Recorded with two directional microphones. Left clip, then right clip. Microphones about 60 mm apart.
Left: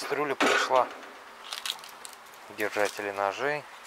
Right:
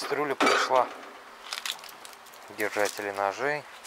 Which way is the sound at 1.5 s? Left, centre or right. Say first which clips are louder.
Right 1 dB; left.